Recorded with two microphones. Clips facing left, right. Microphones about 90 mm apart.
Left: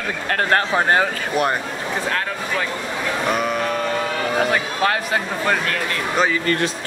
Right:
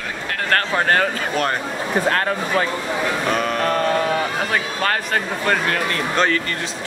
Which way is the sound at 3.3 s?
10° left (ahead or behind).